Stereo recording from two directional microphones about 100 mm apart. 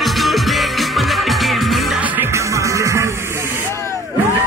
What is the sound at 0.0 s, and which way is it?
Music, centre (ahead or behind).